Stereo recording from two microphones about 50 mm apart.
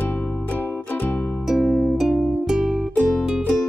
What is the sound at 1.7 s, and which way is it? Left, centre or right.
Music, centre.